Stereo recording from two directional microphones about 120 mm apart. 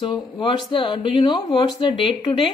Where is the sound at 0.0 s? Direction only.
45° left (ahead or behind).